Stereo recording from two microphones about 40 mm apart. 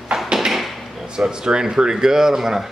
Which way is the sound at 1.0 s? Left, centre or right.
Centre.